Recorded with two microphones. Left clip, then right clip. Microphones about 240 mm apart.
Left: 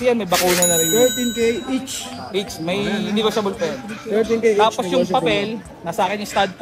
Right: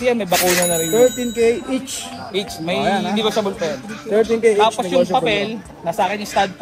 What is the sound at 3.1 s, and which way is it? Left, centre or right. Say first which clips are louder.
Speech: right 1 dB; left.